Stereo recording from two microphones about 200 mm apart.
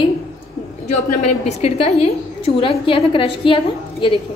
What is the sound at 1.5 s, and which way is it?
A woman's voice, 30° left (ahead or behind).